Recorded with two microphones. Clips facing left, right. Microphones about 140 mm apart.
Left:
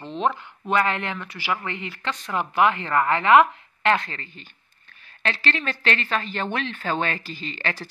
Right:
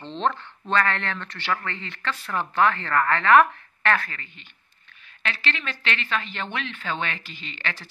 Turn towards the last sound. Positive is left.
turn(degrees=40)  # may be behind; listen again after turning